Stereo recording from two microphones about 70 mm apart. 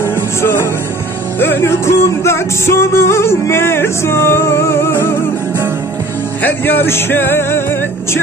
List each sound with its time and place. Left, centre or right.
1.4 s music: left
6.4 s music: left